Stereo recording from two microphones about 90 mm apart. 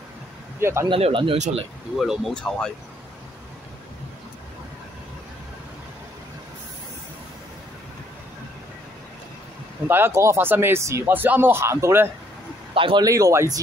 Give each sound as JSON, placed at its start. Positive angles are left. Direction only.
{"t": 0.6, "sound": "speech", "side_deg": -30}
{"t": 0.8, "sound": "speech", "side_deg": -70}
{"t": 2.0, "sound": "speech", "side_deg": 0}
{"t": 9.8, "sound": "speech", "side_deg": -25}
{"t": 12.7, "sound": "speech", "side_deg": -75}
{"t": 13.0, "sound": "speech", "side_deg": -40}